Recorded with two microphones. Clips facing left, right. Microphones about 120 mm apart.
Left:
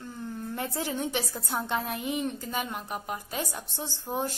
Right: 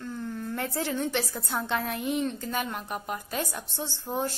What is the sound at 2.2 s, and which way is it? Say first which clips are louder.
A woman's voice: right 1 dB; 5° left (ahead or behind).